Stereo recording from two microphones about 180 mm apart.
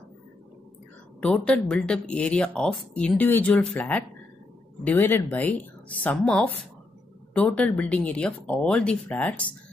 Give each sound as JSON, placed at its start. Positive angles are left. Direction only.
{"t": 1.2, "sound": "speech", "side_deg": 5}